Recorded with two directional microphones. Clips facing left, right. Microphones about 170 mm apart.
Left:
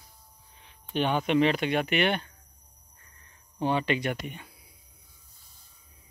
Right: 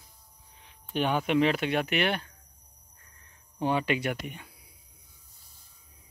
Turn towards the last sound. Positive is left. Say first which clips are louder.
# left 1 dB
turn(degrees=-5)  # may be behind; listen again after turning